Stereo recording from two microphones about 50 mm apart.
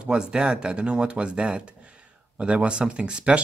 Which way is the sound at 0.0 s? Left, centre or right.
Centre.